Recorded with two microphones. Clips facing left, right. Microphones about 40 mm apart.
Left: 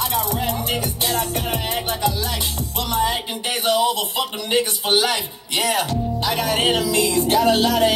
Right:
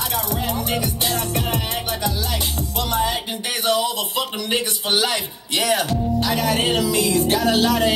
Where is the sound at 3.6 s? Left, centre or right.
Left.